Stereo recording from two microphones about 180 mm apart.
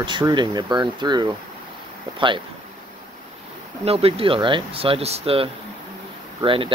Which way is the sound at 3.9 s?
35° right (ahead or behind).